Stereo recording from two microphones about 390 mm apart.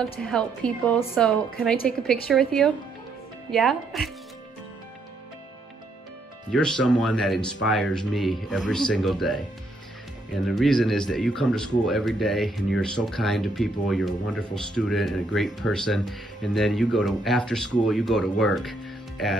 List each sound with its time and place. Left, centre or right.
0.2 s speech: centre
6.5 s speech: centre